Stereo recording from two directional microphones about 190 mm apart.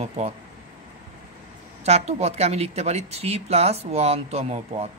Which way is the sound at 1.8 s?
35° right (ahead or behind).